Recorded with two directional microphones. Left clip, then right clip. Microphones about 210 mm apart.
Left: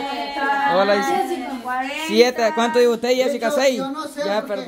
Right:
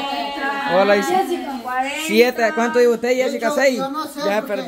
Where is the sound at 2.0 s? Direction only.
5° right (ahead or behind).